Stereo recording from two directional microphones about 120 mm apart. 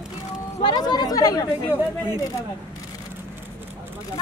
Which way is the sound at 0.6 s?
35° left (ahead or behind).